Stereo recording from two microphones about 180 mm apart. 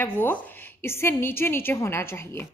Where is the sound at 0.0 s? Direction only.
10° left (ahead or behind).